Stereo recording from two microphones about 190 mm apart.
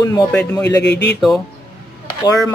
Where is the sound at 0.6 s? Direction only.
65° left (ahead or behind).